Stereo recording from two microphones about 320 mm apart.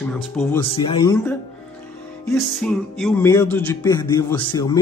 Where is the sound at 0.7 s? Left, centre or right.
Centre.